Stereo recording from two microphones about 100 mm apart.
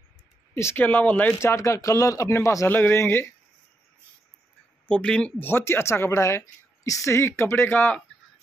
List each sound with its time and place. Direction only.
0.6 s speech: 25° left (ahead or behind)
1.4 s speech: 30° left (ahead or behind)
4.8 s speech: 10° left (ahead or behind)
5.5 s speech: 25° left (ahead or behind)